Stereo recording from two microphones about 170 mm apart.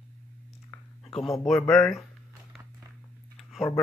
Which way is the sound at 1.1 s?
Centre (ahead or behind).